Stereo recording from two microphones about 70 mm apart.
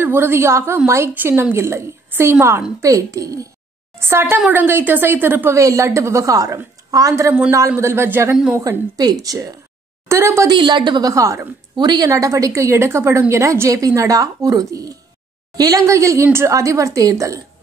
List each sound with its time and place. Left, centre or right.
0.0 s a woman's voice: right
1.1 s speech: right
2.0 s a sound: right
2.8 s a woman's voice: right
4.0 s speech: right
5.5 s a woman's voice: right
7.7 s speech: right
8.9 s speech: right
10.0 s speech: right
10.4 s a woman's voice: right
11.7 s speech: right
12.1 s a woman's voice: right
15.9 s a woman's voice: right